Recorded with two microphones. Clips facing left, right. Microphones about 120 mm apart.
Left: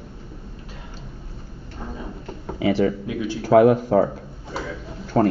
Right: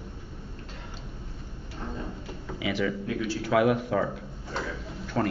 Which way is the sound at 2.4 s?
40° left (ahead or behind).